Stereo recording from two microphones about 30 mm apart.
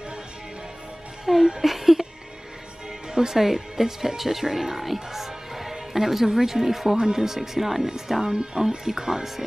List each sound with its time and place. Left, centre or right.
1.2 s music: centre
1.6 s speech: centre
3.3 s speech: centre
7.0 s speech: right
8.2 s speech: right